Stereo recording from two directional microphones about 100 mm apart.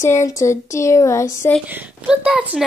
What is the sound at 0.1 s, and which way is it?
Speech, 30° left (ahead or behind).